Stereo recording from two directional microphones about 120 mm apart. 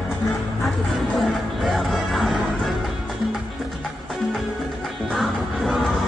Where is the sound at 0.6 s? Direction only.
Centre (ahead or behind).